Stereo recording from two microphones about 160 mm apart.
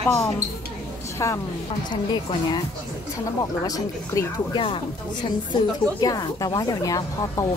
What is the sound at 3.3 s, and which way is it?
Speech, 25° left (ahead or behind).